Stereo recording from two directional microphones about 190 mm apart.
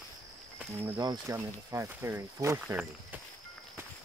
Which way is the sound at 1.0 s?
15° right (ahead or behind).